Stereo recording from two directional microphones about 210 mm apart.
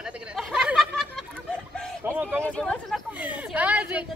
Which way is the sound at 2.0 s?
10° right (ahead or behind).